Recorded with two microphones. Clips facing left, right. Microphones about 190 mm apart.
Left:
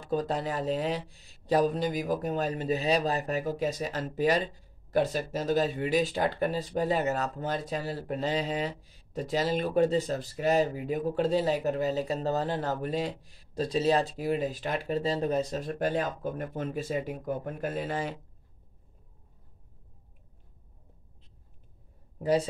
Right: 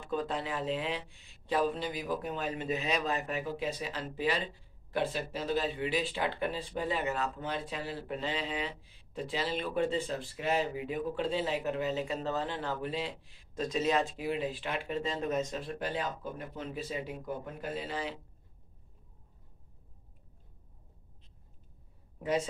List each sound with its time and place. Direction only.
0.0 s speech: 40° left (ahead or behind)
22.2 s speech: 35° left (ahead or behind)